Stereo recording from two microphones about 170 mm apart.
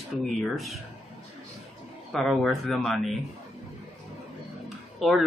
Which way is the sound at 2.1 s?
Centre (ahead or behind).